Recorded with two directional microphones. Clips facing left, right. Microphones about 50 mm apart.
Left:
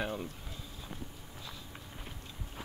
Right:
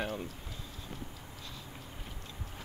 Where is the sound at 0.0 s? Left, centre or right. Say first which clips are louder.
Even; centre.